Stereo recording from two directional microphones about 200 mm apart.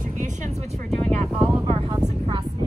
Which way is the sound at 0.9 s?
Centre (ahead or behind).